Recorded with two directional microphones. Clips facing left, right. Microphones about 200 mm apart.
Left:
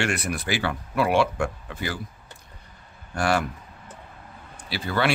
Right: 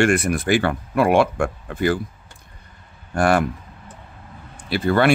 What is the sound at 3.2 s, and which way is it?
Speech, 50° right (ahead or behind).